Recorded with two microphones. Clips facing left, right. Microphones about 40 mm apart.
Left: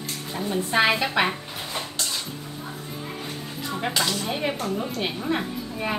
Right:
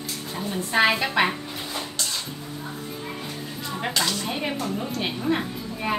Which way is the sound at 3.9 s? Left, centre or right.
Centre.